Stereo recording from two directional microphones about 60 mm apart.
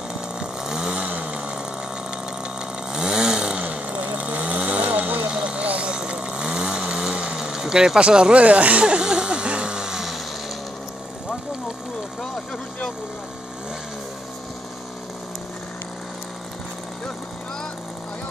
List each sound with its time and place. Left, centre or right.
0.1 s chainsaw: centre
2.9 s chainsaw: centre
5.3 s vehicle: centre